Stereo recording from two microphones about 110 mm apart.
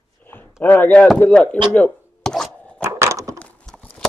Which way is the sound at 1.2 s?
10° left (ahead or behind).